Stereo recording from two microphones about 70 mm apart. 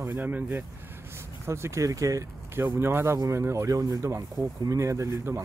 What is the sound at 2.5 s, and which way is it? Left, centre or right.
Speech, right.